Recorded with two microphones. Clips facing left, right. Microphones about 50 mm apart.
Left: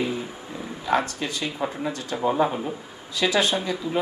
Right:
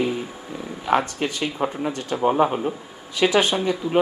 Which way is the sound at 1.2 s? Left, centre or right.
Right.